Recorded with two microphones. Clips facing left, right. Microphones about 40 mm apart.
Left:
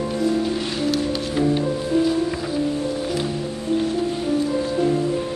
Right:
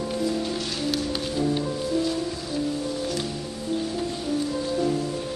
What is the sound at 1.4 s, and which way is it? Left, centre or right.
Music, centre.